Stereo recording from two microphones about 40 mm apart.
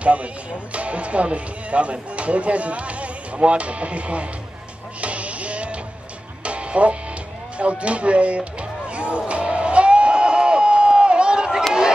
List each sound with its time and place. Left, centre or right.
0.0 s speech: right
5.0 s printer: right
6.4 s music: right
7.5 s speech: right
9.3 s a sound: right